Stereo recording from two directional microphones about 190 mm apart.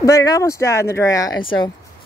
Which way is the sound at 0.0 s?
15° left (ahead or behind).